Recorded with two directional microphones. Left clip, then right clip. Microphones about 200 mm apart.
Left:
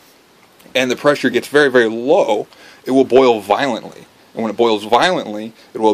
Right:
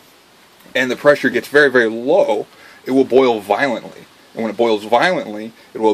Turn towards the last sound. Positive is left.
turn(degrees=15)  # may be behind; listen again after turning